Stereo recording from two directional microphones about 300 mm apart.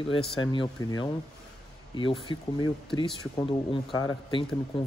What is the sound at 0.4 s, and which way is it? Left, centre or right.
Speech, centre.